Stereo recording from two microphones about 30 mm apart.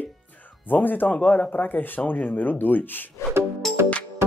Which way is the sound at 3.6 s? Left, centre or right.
Centre.